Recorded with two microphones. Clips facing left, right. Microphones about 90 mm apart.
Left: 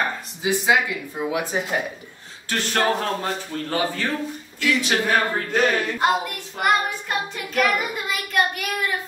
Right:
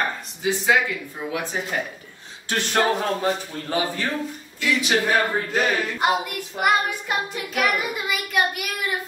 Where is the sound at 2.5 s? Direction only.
20° right (ahead or behind).